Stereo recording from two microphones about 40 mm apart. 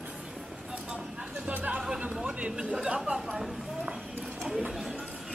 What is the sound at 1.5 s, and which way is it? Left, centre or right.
Chatter, right.